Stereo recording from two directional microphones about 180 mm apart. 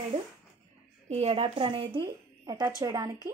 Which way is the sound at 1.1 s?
35° right (ahead or behind).